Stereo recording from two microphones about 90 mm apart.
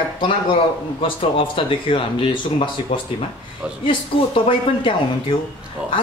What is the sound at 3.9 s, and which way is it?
A man's voice, 75° left (ahead or behind).